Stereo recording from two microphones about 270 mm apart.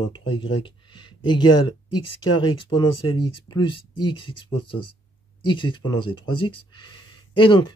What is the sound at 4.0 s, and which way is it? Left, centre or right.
Speech, centre.